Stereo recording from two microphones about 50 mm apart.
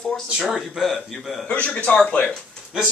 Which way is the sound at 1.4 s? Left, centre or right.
Left.